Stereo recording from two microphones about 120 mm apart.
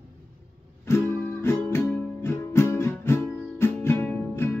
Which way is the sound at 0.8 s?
20° left (ahead or behind).